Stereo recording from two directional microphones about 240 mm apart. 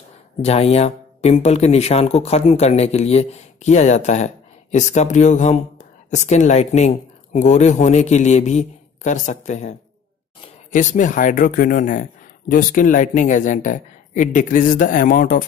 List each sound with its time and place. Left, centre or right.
0.4 s speech: left